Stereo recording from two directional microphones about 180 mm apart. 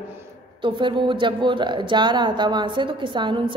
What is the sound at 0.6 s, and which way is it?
Speech, 25° right (ahead or behind).